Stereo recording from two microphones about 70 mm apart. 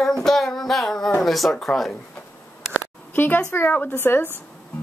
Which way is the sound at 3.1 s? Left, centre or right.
Left.